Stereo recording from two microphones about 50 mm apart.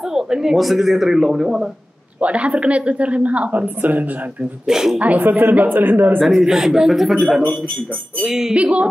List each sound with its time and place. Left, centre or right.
0.1 s speech: centre
2.1 s a woman's voice: right
4.6 s speech: centre
4.9 s a woman's voice: right
5.2 s a man's voice: right
6.2 s speech: centre
8.3 s speech: centre
8.5 s a woman's voice: right